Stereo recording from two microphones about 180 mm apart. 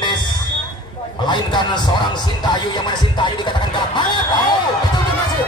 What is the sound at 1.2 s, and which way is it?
Speech, 25° left (ahead or behind).